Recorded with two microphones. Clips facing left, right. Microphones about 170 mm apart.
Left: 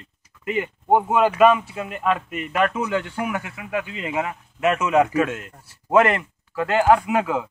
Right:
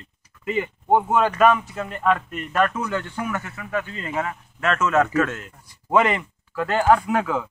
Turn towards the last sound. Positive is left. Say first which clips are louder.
# left 1 dB
turn(degrees=5)  # may be behind; listen again after turning